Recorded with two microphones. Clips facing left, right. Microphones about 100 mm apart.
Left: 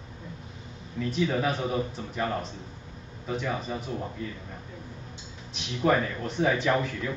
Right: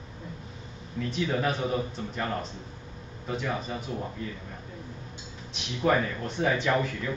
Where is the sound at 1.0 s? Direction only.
Centre (ahead or behind).